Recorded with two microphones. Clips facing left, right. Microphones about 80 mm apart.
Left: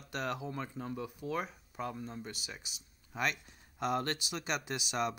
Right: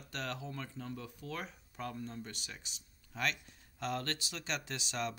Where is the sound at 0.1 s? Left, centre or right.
Centre.